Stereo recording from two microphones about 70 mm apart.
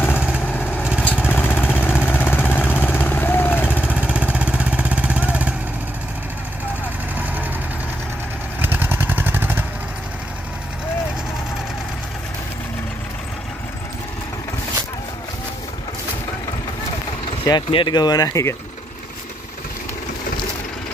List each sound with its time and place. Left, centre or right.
0.5 s vehicle: left
3.6 s vehicle: centre
8.5 s vehicle: right
17.5 s speech: left